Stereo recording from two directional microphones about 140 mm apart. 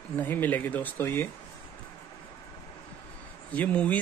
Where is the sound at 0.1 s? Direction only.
15° left (ahead or behind).